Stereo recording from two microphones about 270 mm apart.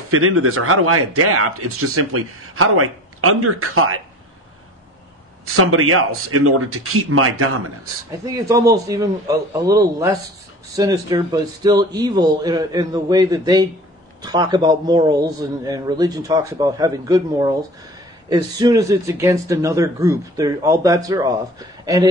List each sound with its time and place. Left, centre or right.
0.1 s speech: right
5.4 s speech: right
8.3 s a man's voice: centre